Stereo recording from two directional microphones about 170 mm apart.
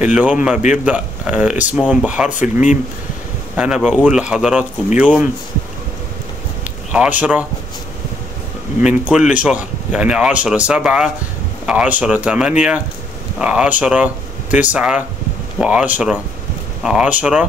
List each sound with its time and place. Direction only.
0.0 s speech: 10° right (ahead or behind)
2.3 s speech: 45° left (ahead or behind)
3.5 s speech: 5° right (ahead or behind)
6.9 s speech: 5° right (ahead or behind)
8.8 s speech: 5° right (ahead or behind)